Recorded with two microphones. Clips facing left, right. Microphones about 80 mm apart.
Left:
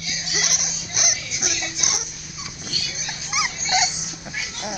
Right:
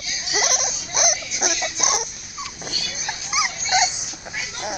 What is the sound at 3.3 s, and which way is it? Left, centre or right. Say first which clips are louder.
Dog: right 1 dB; centre.